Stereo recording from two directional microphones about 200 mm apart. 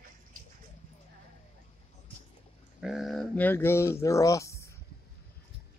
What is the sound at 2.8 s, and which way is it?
Speech, centre (ahead or behind).